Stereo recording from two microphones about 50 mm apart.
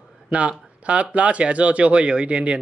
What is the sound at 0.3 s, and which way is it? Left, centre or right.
Speech, right.